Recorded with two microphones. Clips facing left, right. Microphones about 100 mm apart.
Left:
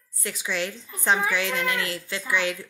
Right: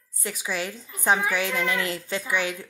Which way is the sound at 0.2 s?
10° right (ahead or behind).